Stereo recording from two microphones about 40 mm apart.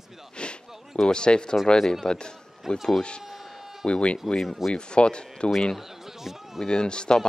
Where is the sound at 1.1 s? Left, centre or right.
Left.